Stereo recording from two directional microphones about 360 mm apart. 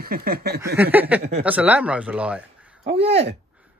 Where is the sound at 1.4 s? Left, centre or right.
Centre.